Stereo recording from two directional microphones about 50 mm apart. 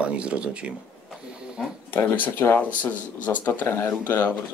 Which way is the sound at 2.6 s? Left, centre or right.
Left.